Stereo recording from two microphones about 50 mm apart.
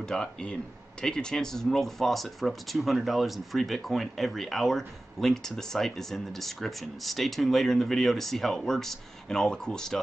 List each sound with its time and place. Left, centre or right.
0.0 s speech: centre